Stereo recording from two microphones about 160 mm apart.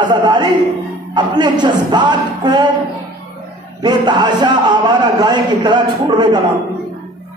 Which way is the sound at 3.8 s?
25° right (ahead or behind).